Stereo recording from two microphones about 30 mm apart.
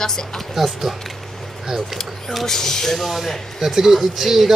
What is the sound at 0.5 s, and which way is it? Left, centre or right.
Speech, centre.